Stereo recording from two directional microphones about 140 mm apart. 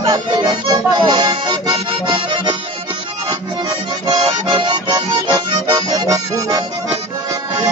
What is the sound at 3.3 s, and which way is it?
Accordion, 35° right (ahead or behind).